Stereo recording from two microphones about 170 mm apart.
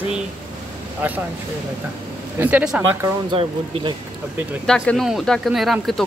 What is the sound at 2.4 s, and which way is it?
Speech, 10° right (ahead or behind).